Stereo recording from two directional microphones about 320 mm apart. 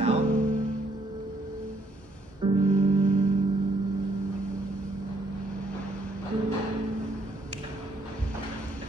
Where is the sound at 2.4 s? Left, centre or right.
Centre.